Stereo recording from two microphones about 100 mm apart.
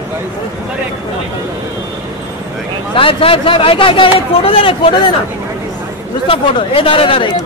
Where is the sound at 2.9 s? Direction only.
60° left (ahead or behind).